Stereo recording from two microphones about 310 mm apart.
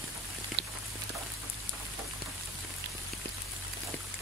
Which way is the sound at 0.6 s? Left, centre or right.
Right.